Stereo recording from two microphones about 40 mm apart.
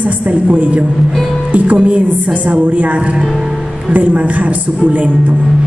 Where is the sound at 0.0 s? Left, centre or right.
Right.